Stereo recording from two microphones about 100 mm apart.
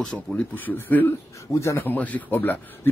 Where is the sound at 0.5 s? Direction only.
20° left (ahead or behind).